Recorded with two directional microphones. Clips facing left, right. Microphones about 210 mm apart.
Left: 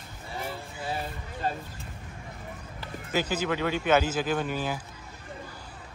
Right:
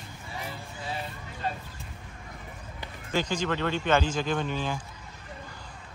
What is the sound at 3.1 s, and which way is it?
A man's voice, 5° left (ahead or behind).